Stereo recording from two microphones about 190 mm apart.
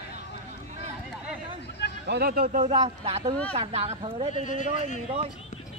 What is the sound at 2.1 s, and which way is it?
Speech, 55° right (ahead or behind).